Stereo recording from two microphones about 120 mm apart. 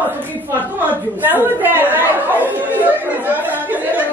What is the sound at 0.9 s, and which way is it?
A woman's voice, 15° right (ahead or behind).